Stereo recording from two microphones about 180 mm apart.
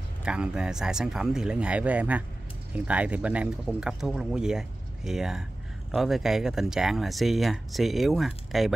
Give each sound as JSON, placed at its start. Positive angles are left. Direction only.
{"t": 0.2, "sound": "speech", "side_deg": -5}